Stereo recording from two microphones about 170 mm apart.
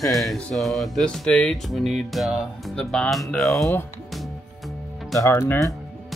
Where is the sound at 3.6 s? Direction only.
15° left (ahead or behind).